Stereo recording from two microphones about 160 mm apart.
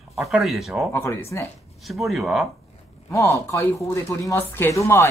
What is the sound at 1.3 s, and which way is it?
Speech, 20° left (ahead or behind).